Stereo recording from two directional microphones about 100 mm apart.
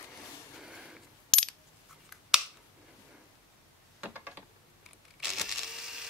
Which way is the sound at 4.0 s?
20° right (ahead or behind).